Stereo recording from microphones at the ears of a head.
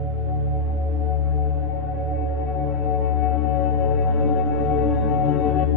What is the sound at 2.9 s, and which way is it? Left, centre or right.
Music, left.